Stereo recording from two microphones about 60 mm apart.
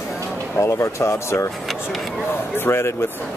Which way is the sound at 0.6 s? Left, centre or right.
Left.